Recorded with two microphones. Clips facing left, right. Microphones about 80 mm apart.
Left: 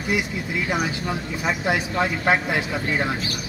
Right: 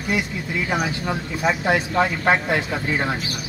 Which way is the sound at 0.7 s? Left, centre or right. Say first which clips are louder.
Right 2 dB; centre.